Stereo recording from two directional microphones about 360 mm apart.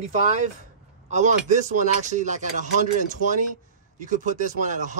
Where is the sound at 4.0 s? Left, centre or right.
Right.